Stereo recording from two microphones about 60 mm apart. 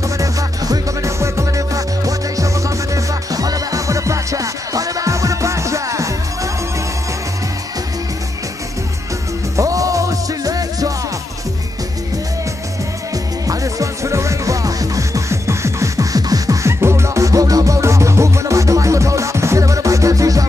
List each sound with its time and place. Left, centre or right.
0.2 s music: right
9.6 s music: right
13.5 s music: right
16.6 s music: right